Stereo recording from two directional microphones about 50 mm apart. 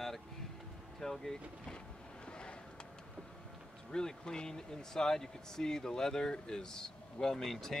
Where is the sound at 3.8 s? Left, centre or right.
Centre.